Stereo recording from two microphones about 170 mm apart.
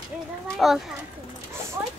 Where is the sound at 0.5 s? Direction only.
Centre (ahead or behind).